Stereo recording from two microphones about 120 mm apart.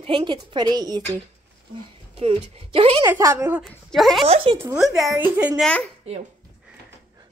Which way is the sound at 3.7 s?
5° left (ahead or behind).